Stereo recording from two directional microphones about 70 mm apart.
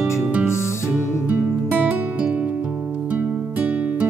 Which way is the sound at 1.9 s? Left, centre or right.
Centre.